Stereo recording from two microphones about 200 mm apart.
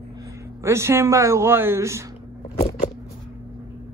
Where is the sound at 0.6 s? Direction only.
15° right (ahead or behind).